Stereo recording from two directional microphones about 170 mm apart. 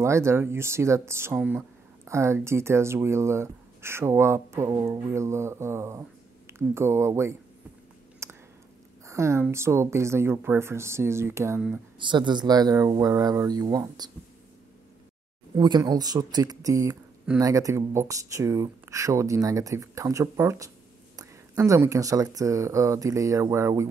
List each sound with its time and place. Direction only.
0.0 s speech: 15° right (ahead or behind)
8.2 s a sound: 15° right (ahead or behind)
9.0 s speech: 15° right (ahead or behind)
12.0 s speech: 25° right (ahead or behind)
15.5 s speech: 25° right (ahead or behind)